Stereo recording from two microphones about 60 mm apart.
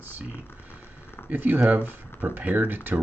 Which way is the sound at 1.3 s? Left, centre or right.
Right.